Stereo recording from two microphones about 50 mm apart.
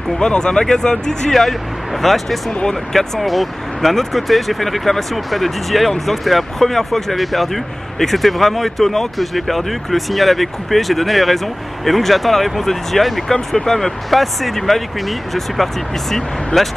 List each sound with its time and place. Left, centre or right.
0.2 s speech: centre